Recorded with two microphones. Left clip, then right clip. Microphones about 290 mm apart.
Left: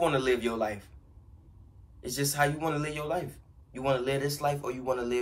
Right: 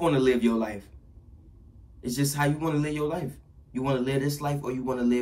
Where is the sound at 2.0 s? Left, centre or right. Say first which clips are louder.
Right 1 dB; centre.